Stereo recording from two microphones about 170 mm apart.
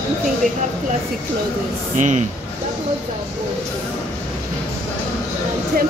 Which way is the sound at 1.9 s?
45° right (ahead or behind).